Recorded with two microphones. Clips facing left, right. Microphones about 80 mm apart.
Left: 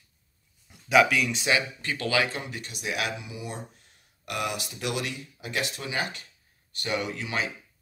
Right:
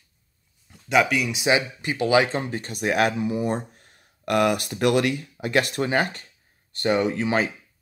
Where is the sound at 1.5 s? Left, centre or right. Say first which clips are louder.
Right 5 dB; centre.